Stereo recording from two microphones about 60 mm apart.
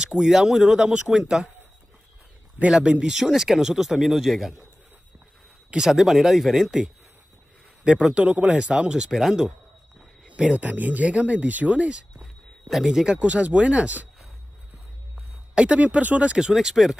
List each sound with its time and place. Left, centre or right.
0.0 s speech: centre
2.7 s speech: centre
3.1 s a man's voice: centre
5.7 s a man's voice: centre
10.2 s speech: right
12.2 s a sound: centre
13.1 s speech: right
15.5 s speech: centre
16.3 s speech: centre